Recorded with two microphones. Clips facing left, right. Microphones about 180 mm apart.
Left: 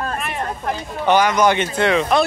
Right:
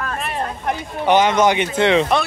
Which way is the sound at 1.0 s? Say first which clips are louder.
Right 1 dB; 20° right (ahead or behind).